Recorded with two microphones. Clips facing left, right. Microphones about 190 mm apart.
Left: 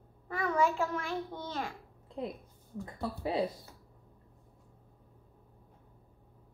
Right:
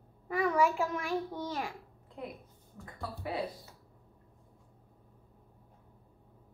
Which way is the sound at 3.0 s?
20° left (ahead or behind).